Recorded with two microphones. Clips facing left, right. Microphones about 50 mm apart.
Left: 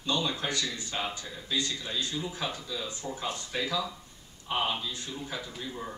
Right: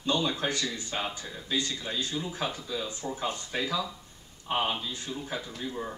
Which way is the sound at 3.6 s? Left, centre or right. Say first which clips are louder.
Even; centre.